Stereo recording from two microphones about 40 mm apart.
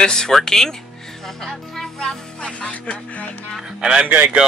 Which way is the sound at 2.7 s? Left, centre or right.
Left.